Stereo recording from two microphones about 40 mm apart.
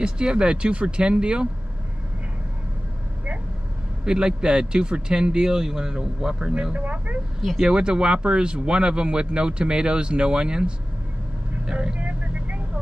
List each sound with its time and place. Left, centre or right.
0.0 s speech: right
4.0 s speech: right
6.7 s speech: right
7.6 s speech: right
12.0 s vehicle: right